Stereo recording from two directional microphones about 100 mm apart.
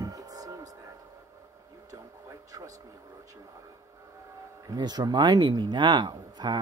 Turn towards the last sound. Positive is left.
turn(degrees=-45)  # may be behind; listen again after turning